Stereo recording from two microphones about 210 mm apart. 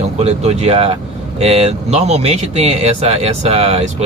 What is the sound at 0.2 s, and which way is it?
Speech, 30° right (ahead or behind).